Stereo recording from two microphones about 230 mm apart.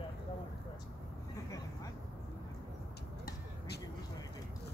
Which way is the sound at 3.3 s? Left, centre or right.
Left.